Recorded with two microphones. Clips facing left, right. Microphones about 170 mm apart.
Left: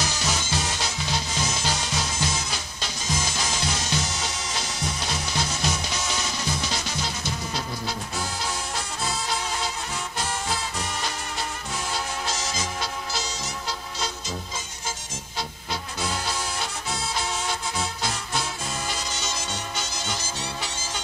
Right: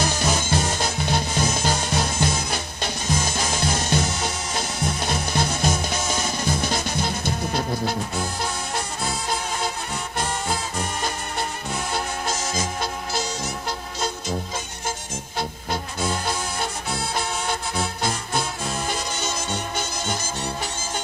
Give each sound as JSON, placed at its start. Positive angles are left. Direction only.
{"t": 0.0, "sound": "music", "side_deg": -55}
{"t": 10.1, "sound": "music", "side_deg": -55}
{"t": 15.3, "sound": "music", "side_deg": -55}
{"t": 18.9, "sound": "music", "side_deg": -55}